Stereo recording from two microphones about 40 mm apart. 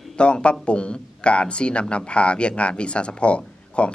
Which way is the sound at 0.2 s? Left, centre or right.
Left.